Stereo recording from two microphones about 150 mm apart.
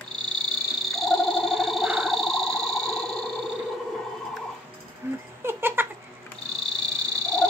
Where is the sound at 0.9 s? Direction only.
Centre (ahead or behind).